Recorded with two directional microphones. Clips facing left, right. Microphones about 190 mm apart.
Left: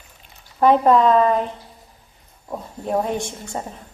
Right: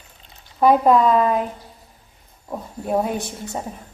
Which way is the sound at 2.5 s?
5° right (ahead or behind).